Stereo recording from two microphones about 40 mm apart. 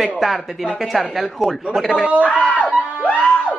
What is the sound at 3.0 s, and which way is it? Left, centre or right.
Music, left.